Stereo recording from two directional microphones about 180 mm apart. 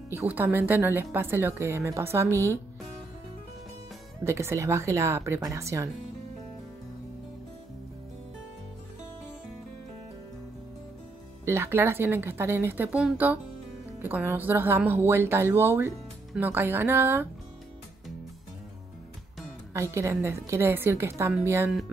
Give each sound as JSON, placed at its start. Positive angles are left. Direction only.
{"t": 0.1, "sound": "speech", "side_deg": -10}
{"t": 4.2, "sound": "speech", "side_deg": -15}
{"t": 11.4, "sound": "speech", "side_deg": -15}
{"t": 19.7, "sound": "speech", "side_deg": -15}